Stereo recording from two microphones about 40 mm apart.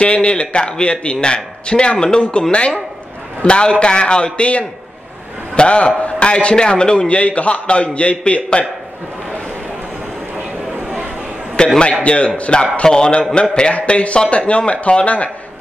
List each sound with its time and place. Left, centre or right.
0.0 s a man's voice: left
3.4 s a man's voice: left
11.6 s a man's voice: left